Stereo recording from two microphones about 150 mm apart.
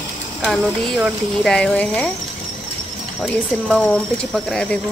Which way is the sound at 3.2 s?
Centre (ahead or behind).